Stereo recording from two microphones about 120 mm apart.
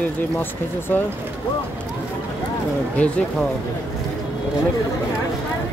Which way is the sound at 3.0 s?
10° left (ahead or behind).